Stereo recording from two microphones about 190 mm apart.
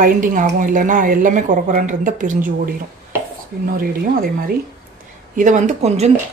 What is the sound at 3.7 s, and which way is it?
Speech, 50° right (ahead or behind).